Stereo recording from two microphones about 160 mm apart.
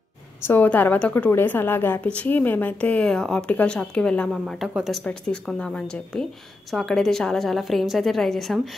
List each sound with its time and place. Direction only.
0.4 s a woman's voice: 10° left (ahead or behind)